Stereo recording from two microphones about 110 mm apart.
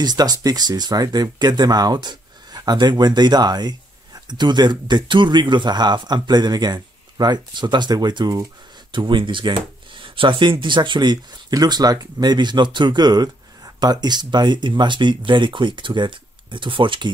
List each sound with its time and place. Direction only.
0.0 s speech: 40° right (ahead or behind)